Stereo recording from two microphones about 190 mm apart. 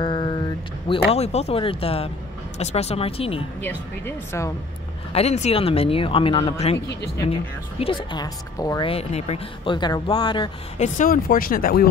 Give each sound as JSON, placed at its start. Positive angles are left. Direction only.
{"t": 0.0, "sound": "a sound", "side_deg": 25}
{"t": 2.6, "sound": "speech", "side_deg": 35}
{"t": 3.6, "sound": "speech", "side_deg": 15}
{"t": 5.1, "sound": "speech", "side_deg": 35}
{"t": 7.8, "sound": "a woman's voice", "side_deg": 25}
{"t": 10.8, "sound": "speech", "side_deg": 45}